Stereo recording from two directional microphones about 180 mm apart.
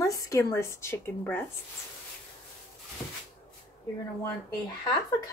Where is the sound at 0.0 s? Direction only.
20° left (ahead or behind).